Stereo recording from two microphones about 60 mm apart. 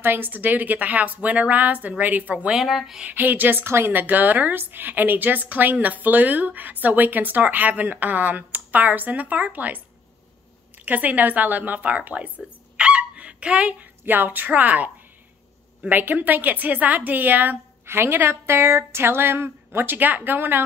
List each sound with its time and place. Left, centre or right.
0.0 s a woman's voice: right
2.5 s speech: centre
3.0 s a woman's voice: right
10.9 s a woman's voice: right
15.9 s a woman's voice: right
17.8 s a woman's voice: right